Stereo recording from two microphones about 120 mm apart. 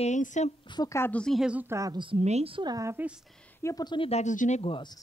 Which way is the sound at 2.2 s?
60° right (ahead or behind).